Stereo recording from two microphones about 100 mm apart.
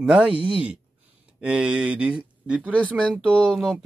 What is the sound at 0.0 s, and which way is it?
Speech, 10° right (ahead or behind).